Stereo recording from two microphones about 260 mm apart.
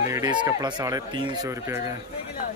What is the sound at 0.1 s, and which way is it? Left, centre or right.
Speech, centre.